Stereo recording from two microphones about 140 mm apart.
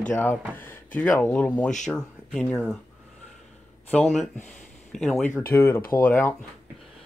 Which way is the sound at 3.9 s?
5° left (ahead or behind).